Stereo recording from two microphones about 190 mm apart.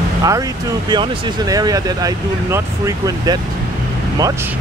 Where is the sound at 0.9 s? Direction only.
20° right (ahead or behind).